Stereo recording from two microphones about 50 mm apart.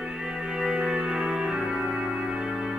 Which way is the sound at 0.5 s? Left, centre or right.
Centre.